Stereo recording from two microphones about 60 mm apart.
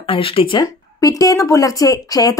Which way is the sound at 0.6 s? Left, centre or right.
Left.